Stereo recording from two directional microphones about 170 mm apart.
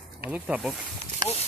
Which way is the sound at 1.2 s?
25° right (ahead or behind).